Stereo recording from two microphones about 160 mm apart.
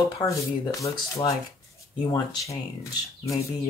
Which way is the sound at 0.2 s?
20° left (ahead or behind).